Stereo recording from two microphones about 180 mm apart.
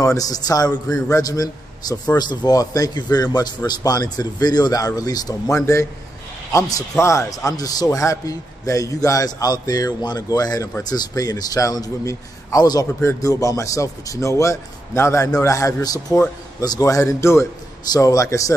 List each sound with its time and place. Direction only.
0.0 s a man's voice: 20° left (ahead or behind)